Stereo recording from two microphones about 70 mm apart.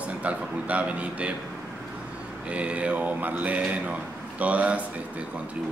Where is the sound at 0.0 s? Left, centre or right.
Centre.